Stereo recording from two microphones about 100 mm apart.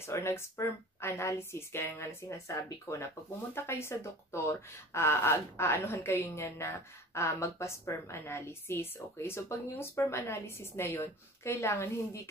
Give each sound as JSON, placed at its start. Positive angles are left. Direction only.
{"t": 0.0, "sound": "a woman's voice", "side_deg": 25}